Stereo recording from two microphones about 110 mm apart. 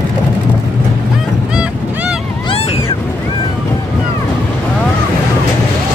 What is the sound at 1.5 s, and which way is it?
Goose, 10° right (ahead or behind).